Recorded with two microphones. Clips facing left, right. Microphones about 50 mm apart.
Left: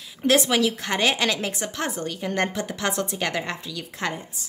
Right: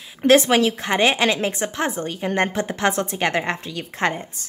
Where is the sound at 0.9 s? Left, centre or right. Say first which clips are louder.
Right 5 dB; right.